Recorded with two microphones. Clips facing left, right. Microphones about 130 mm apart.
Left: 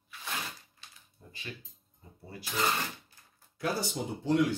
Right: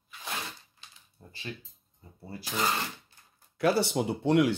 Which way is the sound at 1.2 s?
35° right (ahead or behind).